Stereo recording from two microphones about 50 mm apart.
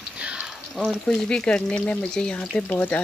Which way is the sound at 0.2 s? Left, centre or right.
Right.